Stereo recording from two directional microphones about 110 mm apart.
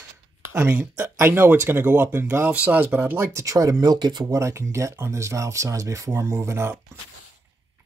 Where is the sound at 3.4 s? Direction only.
30° right (ahead or behind).